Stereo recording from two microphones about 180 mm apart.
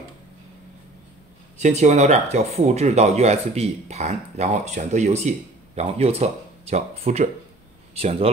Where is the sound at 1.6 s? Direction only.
40° right (ahead or behind).